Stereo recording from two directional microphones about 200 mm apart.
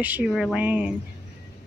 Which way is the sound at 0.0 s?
10° right (ahead or behind).